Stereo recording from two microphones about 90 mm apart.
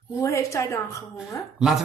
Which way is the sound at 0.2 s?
35° left (ahead or behind).